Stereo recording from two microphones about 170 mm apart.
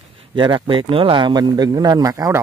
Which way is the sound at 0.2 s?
30° right (ahead or behind).